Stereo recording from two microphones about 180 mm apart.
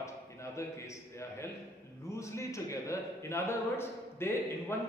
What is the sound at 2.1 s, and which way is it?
A man's voice, 15° left (ahead or behind).